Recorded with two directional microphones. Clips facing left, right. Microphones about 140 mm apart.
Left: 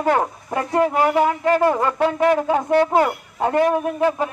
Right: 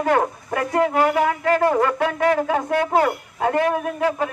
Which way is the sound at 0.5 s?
25° left (ahead or behind).